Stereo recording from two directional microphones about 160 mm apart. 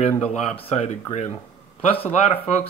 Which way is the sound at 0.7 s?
45° left (ahead or behind).